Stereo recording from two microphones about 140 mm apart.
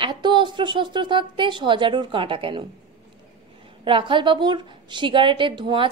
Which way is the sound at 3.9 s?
35° right (ahead or behind).